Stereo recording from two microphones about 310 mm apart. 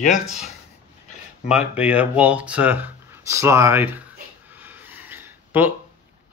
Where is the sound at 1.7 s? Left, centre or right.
Centre.